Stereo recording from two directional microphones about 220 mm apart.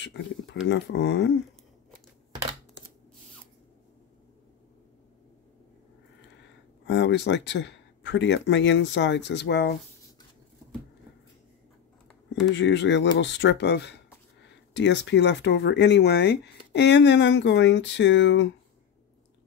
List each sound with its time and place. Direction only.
0.0 s speech: 55° left (ahead or behind)
6.9 s speech: 55° left (ahead or behind)
12.4 s speech: 55° left (ahead or behind)